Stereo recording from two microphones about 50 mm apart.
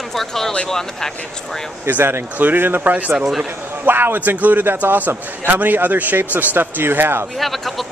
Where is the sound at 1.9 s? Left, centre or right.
Right.